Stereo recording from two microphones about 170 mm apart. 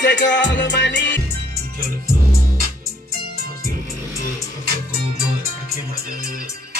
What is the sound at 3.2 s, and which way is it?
Music, 60° right (ahead or behind).